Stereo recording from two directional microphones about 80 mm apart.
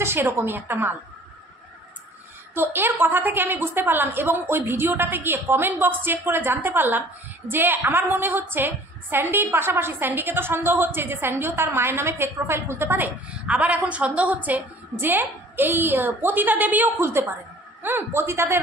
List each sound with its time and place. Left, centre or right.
0.0 s a woman's voice: right
2.5 s a woman's voice: right
17.0 s a woman's voice: right